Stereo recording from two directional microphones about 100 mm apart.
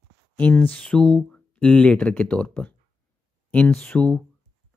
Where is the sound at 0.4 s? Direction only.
15° left (ahead or behind).